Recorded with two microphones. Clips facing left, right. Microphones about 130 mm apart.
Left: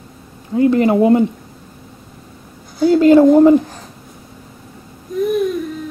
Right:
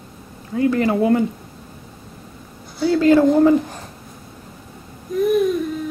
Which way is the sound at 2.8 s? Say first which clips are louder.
Left 5 dB; 15° left (ahead or behind).